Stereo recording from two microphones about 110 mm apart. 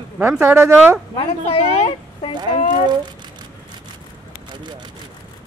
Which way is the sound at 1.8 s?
65° left (ahead or behind).